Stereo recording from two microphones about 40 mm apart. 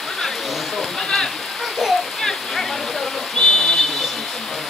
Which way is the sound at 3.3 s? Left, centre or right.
Centre.